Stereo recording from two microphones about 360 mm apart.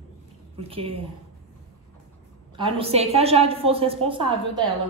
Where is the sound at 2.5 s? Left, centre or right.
Centre.